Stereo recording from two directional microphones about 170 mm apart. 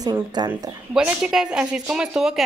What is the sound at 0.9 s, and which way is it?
Speech, 5° right (ahead or behind).